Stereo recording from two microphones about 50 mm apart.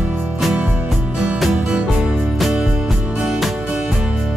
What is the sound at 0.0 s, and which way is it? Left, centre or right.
Music, centre.